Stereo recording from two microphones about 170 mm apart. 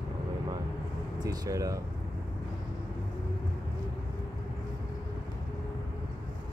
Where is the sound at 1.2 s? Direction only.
20° right (ahead or behind).